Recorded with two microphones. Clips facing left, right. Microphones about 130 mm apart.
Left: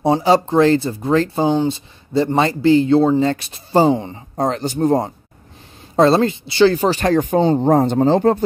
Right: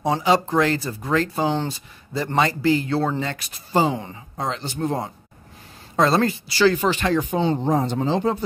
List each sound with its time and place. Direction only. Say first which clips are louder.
0.0 s speech: left 5 dB; 30° left (ahead or behind)
4.4 s speech: left 8 dB; 45° left (ahead or behind)
5.9 s speech: left 5 dB; 30° left (ahead or behind); by 8.5 s 50° left (ahead or behind)